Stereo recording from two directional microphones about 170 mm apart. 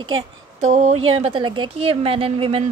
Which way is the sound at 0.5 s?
40° right (ahead or behind).